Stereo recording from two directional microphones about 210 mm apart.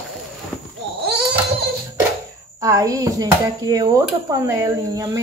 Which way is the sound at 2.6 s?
15° right (ahead or behind).